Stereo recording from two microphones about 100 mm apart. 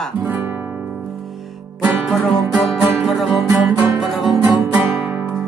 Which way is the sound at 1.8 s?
Centre (ahead or behind).